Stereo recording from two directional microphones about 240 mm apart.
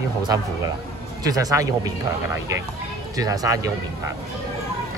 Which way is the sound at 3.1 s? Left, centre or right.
Centre.